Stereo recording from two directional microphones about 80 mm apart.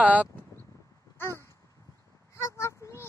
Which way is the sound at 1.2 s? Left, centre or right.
Left.